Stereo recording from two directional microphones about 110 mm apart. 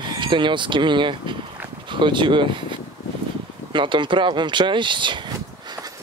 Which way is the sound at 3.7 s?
45° right (ahead or behind).